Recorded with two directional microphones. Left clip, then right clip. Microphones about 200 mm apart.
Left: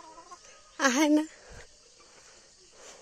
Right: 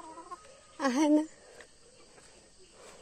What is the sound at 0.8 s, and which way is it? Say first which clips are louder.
Speech: left 3 dB; 20° left (ahead or behind).